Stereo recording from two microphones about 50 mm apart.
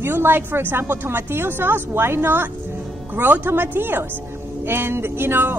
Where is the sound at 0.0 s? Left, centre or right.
Right.